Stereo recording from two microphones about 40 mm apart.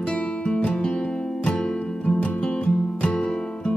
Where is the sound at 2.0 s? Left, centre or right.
Left.